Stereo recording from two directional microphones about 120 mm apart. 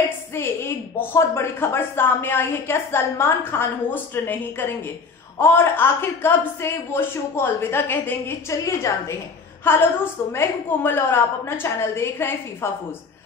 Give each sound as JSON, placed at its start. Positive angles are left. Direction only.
{"t": 0.3, "sound": "speech", "side_deg": 20}